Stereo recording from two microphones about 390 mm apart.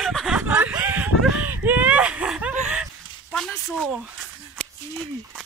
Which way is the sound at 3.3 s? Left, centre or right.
Centre.